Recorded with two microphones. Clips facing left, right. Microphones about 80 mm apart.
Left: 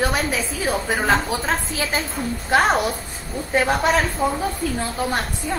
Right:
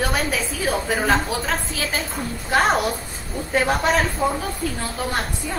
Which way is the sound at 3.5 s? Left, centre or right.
Centre.